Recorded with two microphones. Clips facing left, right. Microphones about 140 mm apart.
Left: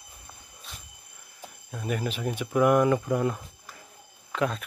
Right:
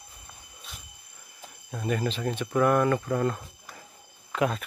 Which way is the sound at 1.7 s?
5° left (ahead or behind).